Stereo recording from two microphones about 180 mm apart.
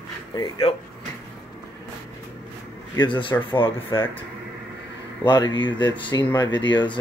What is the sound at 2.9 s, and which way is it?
Speech, 25° left (ahead or behind).